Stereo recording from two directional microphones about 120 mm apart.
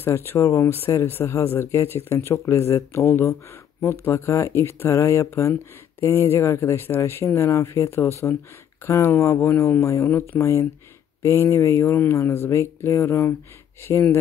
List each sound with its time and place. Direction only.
0.0 s speech: 20° left (ahead or behind)